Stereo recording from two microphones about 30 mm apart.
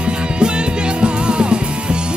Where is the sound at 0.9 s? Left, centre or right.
Right.